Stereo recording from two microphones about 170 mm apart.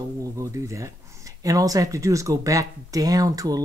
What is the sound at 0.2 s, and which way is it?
Speech, 20° right (ahead or behind).